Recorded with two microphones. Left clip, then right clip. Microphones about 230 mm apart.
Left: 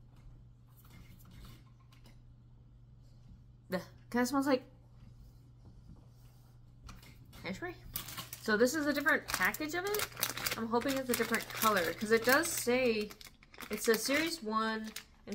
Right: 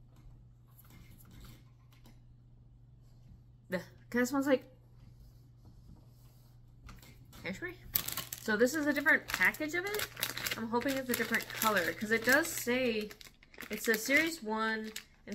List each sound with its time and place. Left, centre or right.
3.6 s a woman's voice: centre
7.4 s speech: centre